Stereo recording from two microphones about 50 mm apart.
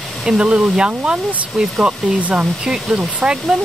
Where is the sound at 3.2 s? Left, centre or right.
Centre.